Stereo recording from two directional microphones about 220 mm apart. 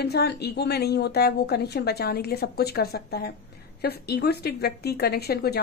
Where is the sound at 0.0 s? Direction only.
45° left (ahead or behind).